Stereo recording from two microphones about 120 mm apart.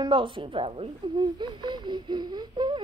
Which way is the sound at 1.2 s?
40° right (ahead or behind).